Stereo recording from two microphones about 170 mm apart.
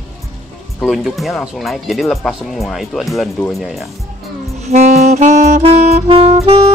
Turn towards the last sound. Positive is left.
turn(degrees=-20)  # may be behind; listen again after turning